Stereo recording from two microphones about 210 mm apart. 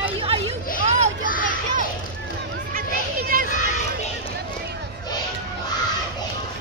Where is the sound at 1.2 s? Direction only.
40° left (ahead or behind).